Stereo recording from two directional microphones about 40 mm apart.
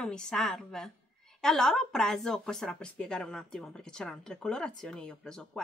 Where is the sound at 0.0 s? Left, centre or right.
Centre.